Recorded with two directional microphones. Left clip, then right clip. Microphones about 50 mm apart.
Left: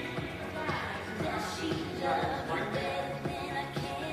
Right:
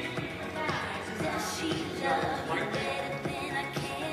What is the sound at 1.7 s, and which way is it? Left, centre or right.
Music, right.